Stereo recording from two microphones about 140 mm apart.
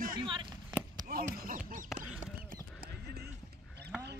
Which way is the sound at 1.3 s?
90° right.